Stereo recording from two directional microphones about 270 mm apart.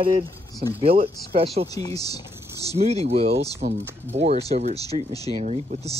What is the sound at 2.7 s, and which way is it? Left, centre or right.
Speech, right.